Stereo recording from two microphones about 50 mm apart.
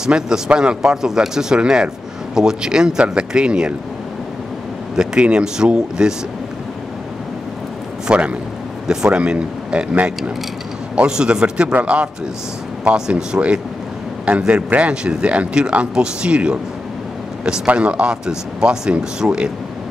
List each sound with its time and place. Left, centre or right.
0.0 s speech: centre
4.9 s speech: centre
8.1 s a man's voice: right
11.0 s speech: centre
14.8 s speech: right
17.6 s speech: right